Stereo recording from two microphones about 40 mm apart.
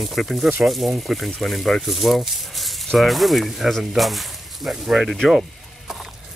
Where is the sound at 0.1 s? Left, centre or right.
Centre.